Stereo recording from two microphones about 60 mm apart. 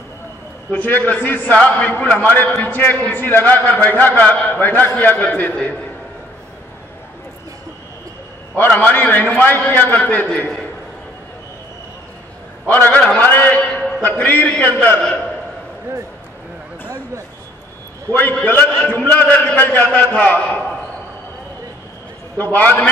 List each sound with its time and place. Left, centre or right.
0.7 s a man's voice: left
8.5 s a man's voice: left
12.6 s a man's voice: left
18.1 s a man's voice: left
22.4 s a man's voice: left